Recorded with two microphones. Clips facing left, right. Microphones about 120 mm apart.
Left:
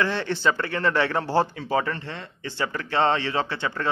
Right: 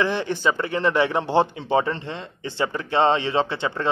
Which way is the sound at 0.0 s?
15° right (ahead or behind).